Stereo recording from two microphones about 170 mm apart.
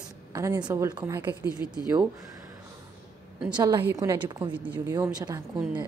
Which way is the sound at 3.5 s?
25° right (ahead or behind).